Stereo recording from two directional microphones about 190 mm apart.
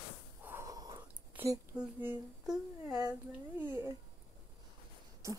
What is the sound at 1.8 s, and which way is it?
Speech, 5° right (ahead or behind).